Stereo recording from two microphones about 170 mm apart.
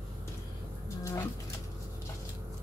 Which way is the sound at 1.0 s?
20° left (ahead or behind).